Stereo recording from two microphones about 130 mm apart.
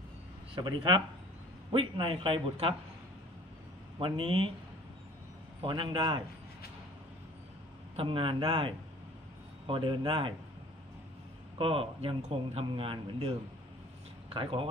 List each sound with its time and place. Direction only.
0.6 s a man's voice: 35° right (ahead or behind)
4.0 s a man's voice: 40° right (ahead or behind)
5.6 s a man's voice: 40° right (ahead or behind)
7.9 s a man's voice: 45° right (ahead or behind)
11.5 s a man's voice: 45° right (ahead or behind)